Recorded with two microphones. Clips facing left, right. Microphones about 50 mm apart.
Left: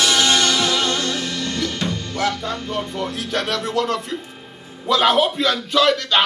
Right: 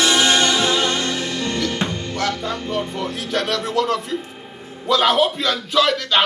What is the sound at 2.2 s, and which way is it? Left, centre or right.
Music, centre.